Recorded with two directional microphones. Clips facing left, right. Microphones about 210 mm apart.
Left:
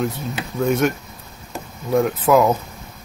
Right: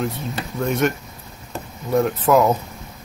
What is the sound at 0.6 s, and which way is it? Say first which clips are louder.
Speech: left 2 dB; centre (ahead or behind).